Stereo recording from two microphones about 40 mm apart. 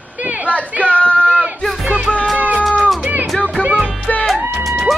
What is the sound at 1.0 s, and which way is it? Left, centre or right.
Sheep, left.